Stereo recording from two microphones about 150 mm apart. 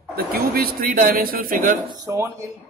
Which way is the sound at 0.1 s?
90° right.